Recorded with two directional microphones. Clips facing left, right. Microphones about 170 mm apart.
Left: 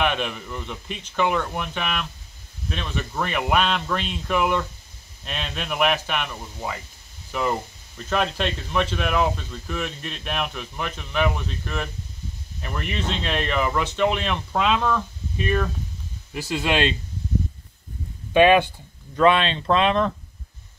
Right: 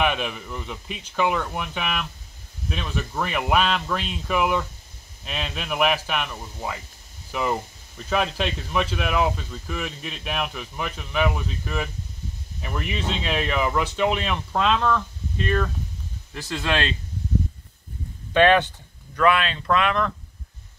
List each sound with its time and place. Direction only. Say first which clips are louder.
0.0 s speech: even; 5° right (ahead or behind); by 16.9 s 15° left (ahead or behind)
18.3 s speech: left 2 dB; 15° left (ahead or behind)
19.1 s speech: left 2 dB; 25° left (ahead or behind)